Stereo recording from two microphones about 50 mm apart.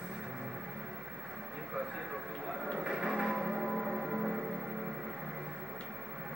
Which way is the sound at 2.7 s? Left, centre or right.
Centre.